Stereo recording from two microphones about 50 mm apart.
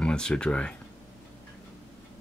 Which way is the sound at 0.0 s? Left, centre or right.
Centre.